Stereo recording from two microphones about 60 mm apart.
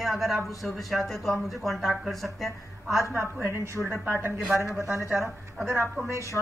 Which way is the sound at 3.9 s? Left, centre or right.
Right.